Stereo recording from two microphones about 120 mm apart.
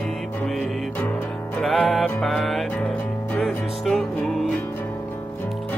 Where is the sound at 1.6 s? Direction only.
Centre (ahead or behind).